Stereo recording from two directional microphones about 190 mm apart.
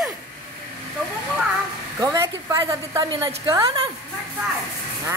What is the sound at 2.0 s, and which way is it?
A woman's voice, 20° right (ahead or behind).